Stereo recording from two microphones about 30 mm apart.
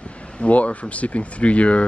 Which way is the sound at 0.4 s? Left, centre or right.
Left.